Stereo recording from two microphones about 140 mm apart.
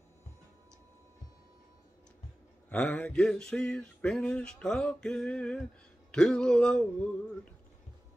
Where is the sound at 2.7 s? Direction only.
10° left (ahead or behind).